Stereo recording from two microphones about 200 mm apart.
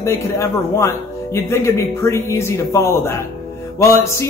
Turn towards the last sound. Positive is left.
turn(degrees=15)  # may be behind; listen again after turning